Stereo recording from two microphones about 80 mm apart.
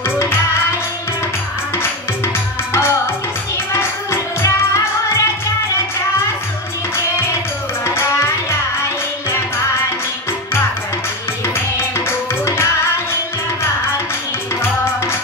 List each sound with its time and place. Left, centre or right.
1.8 s music: left
7.8 s music: left
12.1 s music: left